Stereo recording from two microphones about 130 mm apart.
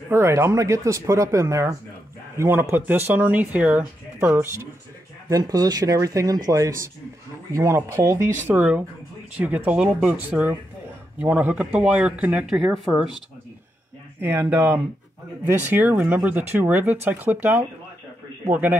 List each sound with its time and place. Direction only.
0.1 s speech: 20° right (ahead or behind); by 13.2 s centre (ahead or behind)
14.2 s speech: 15° right (ahead or behind)